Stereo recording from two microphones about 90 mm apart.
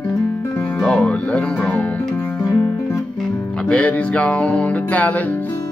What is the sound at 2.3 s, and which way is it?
Guitar, 45° left (ahead or behind).